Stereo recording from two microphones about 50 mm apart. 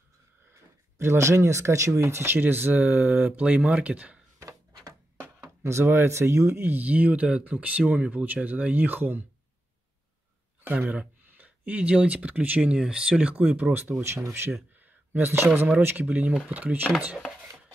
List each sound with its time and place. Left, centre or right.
0.9 s speech: right
5.4 s speech: right
6.6 s speech: right
10.6 s a sound: right
10.9 s speech: right
12.7 s speech: centre
13.2 s speech: right
14.0 s speech: right
14.8 s a sound: right
16.0 s speech: right